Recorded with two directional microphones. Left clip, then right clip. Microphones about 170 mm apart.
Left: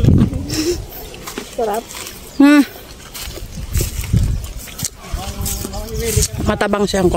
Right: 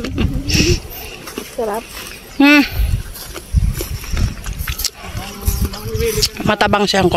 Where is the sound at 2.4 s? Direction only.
30° left (ahead or behind).